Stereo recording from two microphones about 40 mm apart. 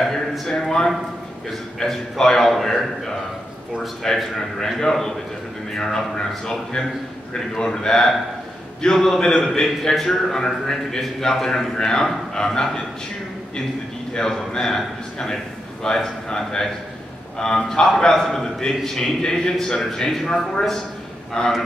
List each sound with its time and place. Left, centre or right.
0.5 s a man's voice: centre
4.1 s a man's voice: centre
14.1 s a man's voice: centre
21.4 s a man's voice: left